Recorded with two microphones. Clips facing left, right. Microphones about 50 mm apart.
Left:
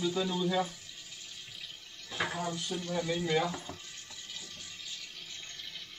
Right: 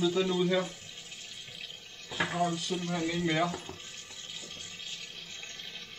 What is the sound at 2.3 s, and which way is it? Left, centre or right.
Speech, right.